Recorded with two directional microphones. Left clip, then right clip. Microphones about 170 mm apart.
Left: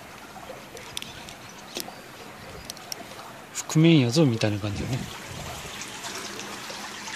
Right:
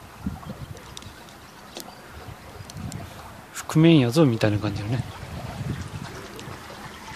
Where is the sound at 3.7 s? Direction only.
5° right (ahead or behind).